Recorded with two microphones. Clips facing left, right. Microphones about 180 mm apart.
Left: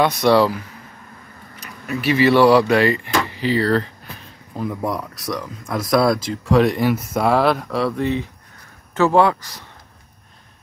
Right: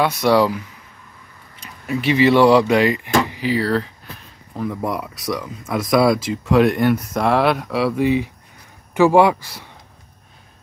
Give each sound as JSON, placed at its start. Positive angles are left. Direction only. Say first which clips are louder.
{"t": 0.0, "sound": "speech", "louder": "left 1 dB", "side_deg": -10}
{"t": 1.6, "sound": "speech", "louder": "right 2 dB", "side_deg": -25}